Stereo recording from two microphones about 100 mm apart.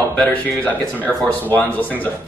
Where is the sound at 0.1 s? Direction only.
10° left (ahead or behind).